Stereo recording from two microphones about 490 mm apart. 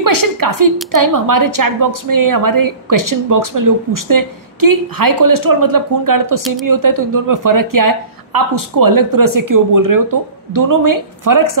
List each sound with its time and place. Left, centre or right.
0.0 s a woman's voice: right